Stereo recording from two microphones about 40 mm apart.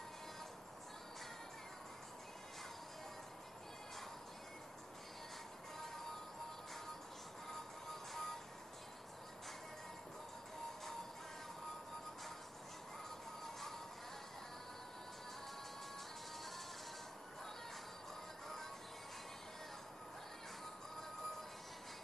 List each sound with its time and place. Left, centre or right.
7.9 s music: centre